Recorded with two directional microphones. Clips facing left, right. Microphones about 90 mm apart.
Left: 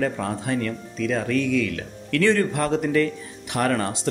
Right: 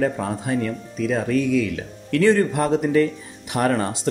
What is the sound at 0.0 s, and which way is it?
Speech, 15° right (ahead or behind).